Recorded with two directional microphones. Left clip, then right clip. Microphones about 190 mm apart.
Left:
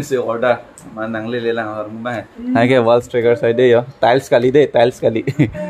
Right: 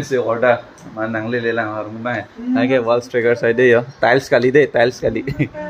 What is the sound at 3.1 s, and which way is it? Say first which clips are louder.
Speech: left 1 dB; 20° left (ahead or behind).